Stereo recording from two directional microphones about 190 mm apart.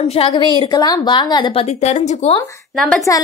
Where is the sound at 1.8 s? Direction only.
35° left (ahead or behind).